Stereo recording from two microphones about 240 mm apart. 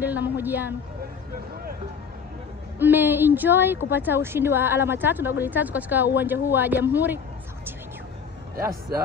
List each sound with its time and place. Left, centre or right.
0.0 s speech: centre
2.8 s speech: centre